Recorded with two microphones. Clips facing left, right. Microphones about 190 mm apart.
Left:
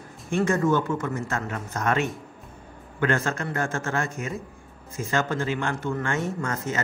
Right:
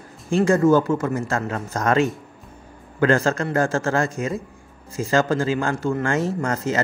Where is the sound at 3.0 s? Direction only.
35° right (ahead or behind).